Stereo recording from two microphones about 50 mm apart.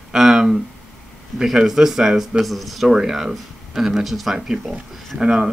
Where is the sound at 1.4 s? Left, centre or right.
Centre.